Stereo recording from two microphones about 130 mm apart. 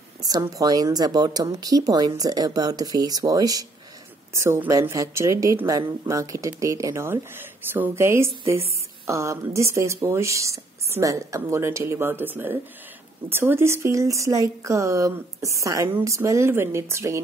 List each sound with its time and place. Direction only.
0.2 s speech: 30° right (ahead or behind)